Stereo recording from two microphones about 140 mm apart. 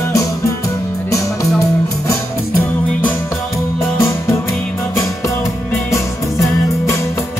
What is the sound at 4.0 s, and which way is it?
Music, 20° left (ahead or behind).